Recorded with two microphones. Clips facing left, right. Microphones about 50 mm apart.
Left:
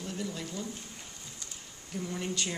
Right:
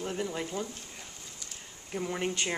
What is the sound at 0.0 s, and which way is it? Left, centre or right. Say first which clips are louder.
Speech: right 4 dB; right.